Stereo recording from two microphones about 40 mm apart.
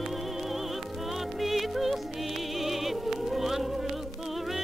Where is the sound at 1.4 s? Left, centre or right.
Centre.